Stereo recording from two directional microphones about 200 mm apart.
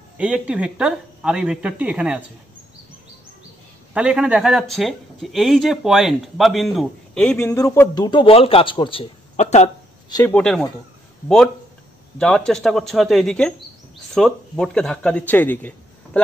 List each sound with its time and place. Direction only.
0.2 s speech: 5° right (ahead or behind)
3.9 s speech: 5° right (ahead or behind); by 9.7 s 35° left (ahead or behind)
10.0 s speech: 20° left (ahead or behind)
10.3 s a man's voice: 5° left (ahead or behind)